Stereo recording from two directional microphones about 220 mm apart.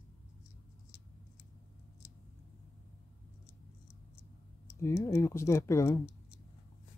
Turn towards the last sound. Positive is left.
turn(degrees=10)  # may be behind; listen again after turning